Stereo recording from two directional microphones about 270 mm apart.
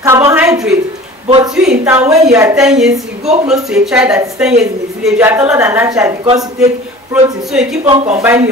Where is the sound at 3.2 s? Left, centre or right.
Right.